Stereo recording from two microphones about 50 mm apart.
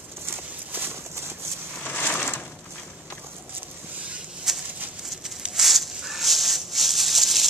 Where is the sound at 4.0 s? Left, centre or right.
Right.